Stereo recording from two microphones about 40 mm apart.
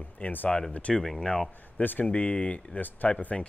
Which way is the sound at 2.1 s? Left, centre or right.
Left.